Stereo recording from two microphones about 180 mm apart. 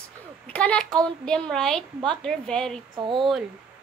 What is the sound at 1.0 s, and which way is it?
A child's voice, 5° left (ahead or behind).